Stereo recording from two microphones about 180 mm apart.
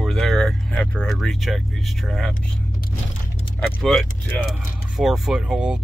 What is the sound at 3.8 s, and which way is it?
Speech, centre (ahead or behind).